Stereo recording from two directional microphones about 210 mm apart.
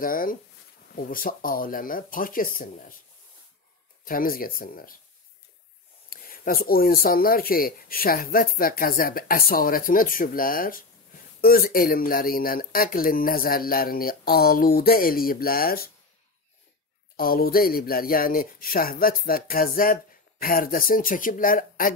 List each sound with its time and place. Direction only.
0.0 s speech: 40° left (ahead or behind)
4.0 s speech: 40° left (ahead or behind)
6.0 s speech: 45° left (ahead or behind)
17.2 s speech: 45° left (ahead or behind)